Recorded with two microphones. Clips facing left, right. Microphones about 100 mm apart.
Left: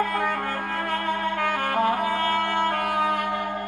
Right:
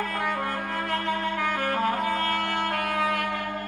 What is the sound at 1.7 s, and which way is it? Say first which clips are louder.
Music: left 3 dB; 20° left (ahead or behind).